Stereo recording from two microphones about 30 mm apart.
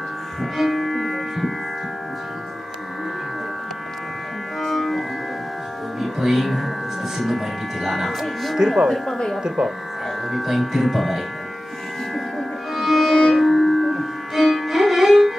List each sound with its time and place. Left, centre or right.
0.4 s music: centre
4.6 s music: centre
7.2 s a sound: centre
8.6 s speech: right
8.9 s speech: centre
9.6 s speech: right
10.3 s speech: centre
12.4 s music: centre